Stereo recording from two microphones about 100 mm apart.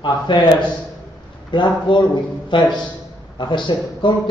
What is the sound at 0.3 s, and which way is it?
Speech, 55° left (ahead or behind).